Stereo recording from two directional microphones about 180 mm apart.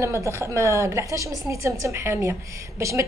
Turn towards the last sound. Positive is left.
turn(degrees=-15)  # may be behind; listen again after turning